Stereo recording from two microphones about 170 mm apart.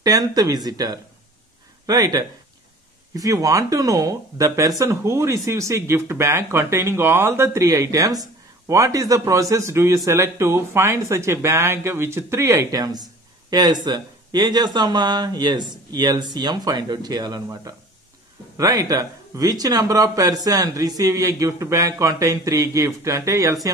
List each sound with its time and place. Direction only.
0.0 s speech: 20° right (ahead or behind)